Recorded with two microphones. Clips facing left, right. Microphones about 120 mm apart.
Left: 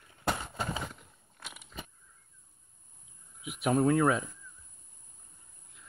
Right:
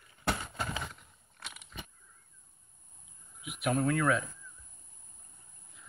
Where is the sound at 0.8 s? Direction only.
5° left (ahead or behind).